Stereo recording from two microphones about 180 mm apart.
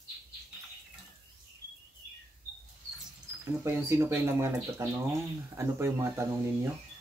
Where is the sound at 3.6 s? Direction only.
15° right (ahead or behind).